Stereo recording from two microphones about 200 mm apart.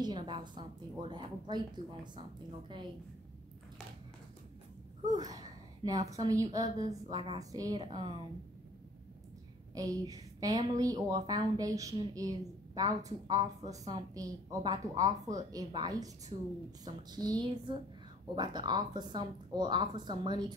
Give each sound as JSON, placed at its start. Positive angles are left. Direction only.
{"t": 0.0, "sound": "a woman's voice", "side_deg": -25}
{"t": 5.3, "sound": "a woman's voice", "side_deg": -20}
{"t": 9.8, "sound": "a woman's voice", "side_deg": -15}